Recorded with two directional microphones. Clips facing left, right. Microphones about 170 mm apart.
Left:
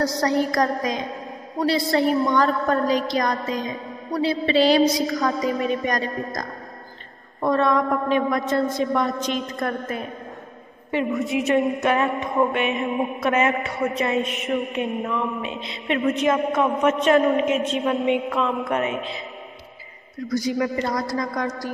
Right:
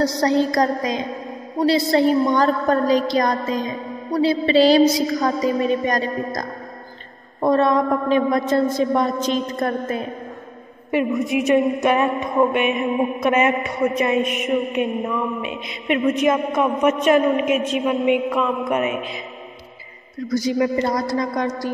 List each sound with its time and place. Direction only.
0.2 s a woman's voice: 25° right (ahead or behind)
10.9 s a woman's voice: 15° right (ahead or behind)
20.5 s a woman's voice: 25° right (ahead or behind)